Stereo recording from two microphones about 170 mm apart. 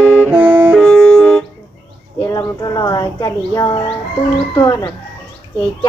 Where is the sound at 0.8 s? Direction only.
5° left (ahead or behind).